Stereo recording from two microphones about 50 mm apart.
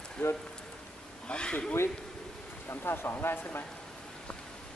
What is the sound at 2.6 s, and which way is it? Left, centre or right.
Speech, left.